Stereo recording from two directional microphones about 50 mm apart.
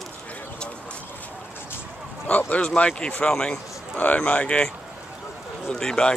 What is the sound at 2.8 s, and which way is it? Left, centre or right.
Speech, left.